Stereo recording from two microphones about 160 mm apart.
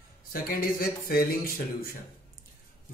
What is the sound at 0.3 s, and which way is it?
A man's voice, 65° left (ahead or behind).